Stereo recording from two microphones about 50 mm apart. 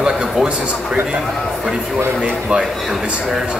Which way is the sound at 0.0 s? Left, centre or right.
Centre.